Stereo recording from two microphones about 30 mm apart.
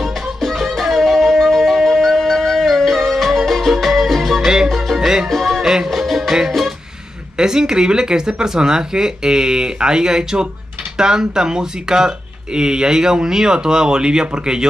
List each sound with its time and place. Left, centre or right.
0.0 s music: centre
5.0 s music: centre
5.3 s music: centre
7.3 s speech: right